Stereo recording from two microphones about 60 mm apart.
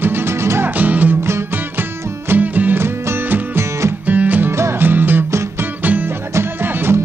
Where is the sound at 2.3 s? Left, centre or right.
Right.